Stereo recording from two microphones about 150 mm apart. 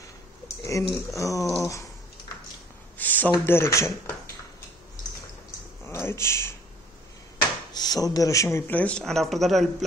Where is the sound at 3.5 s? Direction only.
20° left (ahead or behind).